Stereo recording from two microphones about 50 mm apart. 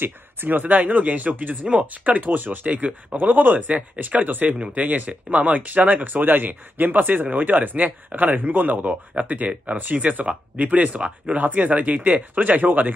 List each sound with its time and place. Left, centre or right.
0.0 s speech: right
2.7 s speech: right
3.2 s speech: right
4.6 s speech: right